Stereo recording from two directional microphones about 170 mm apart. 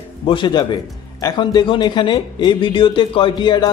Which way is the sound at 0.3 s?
25° left (ahead or behind).